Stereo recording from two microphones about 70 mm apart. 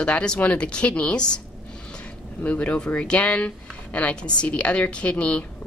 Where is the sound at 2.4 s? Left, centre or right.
Left.